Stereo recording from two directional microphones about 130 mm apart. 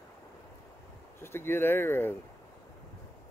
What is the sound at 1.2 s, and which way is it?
Speech, 20° left (ahead or behind).